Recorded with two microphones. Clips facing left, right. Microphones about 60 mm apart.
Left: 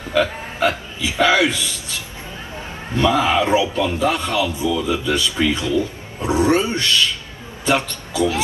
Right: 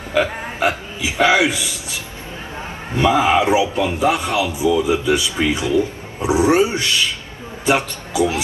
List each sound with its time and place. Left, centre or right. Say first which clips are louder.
0.1 s a man's voice: even; centre
3.0 s a man's voice: right 2 dB; right